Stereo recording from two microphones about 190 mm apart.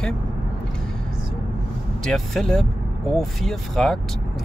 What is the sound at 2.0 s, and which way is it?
Speech, centre (ahead or behind).